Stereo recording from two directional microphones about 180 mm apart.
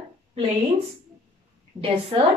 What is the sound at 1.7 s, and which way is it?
Speech, 30° right (ahead or behind).